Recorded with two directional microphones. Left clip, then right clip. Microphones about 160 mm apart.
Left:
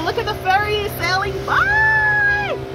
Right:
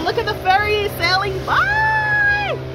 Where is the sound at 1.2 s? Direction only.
25° right (ahead or behind).